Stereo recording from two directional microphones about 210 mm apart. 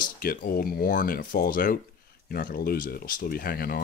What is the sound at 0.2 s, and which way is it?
Speech, 45° left (ahead or behind).